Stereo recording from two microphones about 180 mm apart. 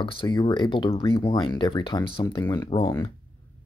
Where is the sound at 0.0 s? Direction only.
30° left (ahead or behind).